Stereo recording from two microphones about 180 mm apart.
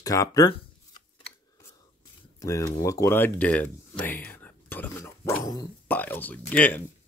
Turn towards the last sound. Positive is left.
turn(degrees=10)  # may be behind; listen again after turning